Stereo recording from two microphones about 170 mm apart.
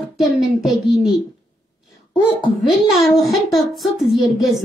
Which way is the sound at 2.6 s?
Centre (ahead or behind).